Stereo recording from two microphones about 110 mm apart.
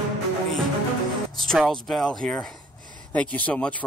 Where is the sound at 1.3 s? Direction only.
5° left (ahead or behind).